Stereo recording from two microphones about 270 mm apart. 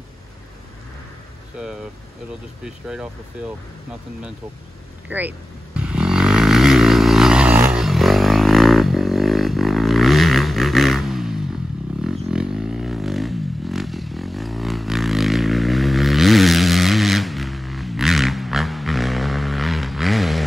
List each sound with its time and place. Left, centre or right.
2.6 s speech: centre
5.1 s speech: centre
5.8 s a sound: centre
12.0 s vehicle: centre